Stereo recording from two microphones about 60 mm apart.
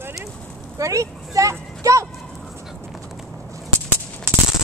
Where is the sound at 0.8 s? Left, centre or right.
Right.